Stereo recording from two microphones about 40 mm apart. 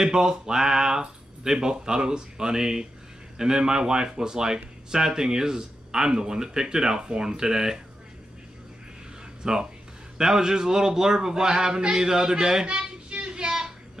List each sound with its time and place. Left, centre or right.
0.0 s speech: centre
9.4 s speech: centre
12.6 s a sound: right